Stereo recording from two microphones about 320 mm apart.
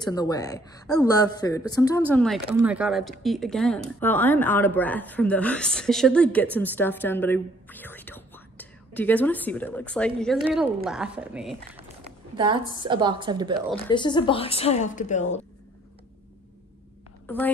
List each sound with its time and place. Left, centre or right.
0.0 s speech: centre
12.4 s a woman's voice: centre
13.8 s a woman's voice: centre